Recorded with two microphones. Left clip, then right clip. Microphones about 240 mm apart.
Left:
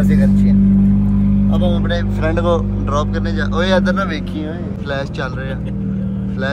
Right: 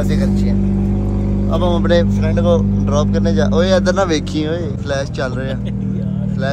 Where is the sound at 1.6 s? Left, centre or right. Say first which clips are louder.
Right 3 dB; right.